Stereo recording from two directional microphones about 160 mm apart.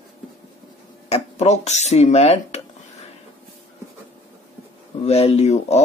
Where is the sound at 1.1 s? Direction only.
40° left (ahead or behind).